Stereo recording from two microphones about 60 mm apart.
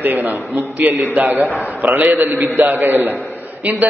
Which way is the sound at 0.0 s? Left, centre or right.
Right.